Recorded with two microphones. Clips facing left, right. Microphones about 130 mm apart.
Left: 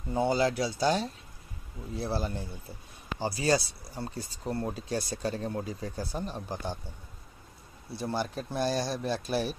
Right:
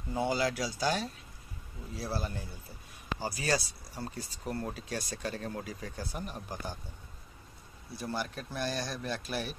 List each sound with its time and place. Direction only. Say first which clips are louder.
0.1 s speech: left 4 dB; 30° left (ahead or behind)
7.9 s speech: left 4 dB; 30° left (ahead or behind)